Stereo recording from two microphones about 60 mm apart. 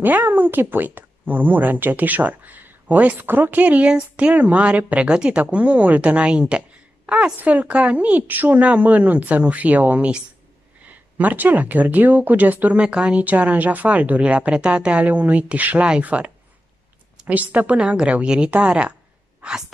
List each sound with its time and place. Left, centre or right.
0.0 s speech: right
7.1 s a sound: centre
7.3 s speech: right
12.8 s speech: centre
17.3 s speech: right